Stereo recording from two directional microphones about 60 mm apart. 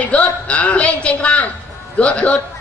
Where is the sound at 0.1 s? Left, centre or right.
Left.